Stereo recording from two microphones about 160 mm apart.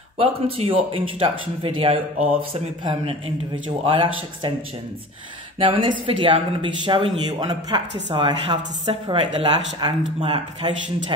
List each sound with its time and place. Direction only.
0.2 s speech: 35° right (ahead or behind)
5.6 s speech: 35° right (ahead or behind)